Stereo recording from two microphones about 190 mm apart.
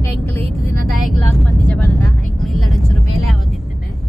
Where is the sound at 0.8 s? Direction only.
5° left (ahead or behind).